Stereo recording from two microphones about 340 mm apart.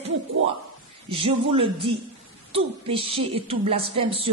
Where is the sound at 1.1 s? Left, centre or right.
Centre.